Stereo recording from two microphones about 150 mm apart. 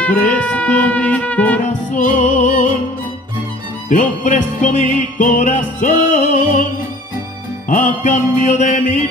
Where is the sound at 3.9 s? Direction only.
55° left (ahead or behind).